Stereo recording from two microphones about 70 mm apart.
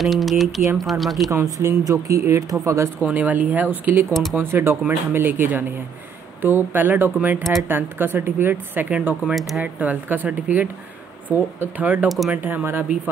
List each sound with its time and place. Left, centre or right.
0.0 s speech: centre
1.3 s speech: right
3.1 s speech: right
4.1 s speech: centre
4.4 s speech: right
12.1 s speech: centre
12.4 s speech: right